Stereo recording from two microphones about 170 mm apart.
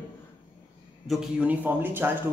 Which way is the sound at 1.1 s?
5° right (ahead or behind).